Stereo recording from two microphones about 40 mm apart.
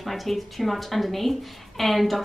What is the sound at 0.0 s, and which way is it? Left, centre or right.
Speech, centre.